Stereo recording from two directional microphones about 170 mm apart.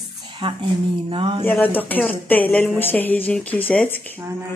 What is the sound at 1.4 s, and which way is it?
Speech, 10° left (ahead or behind).